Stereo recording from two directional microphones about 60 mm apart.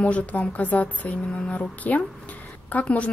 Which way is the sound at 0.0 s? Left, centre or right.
Left.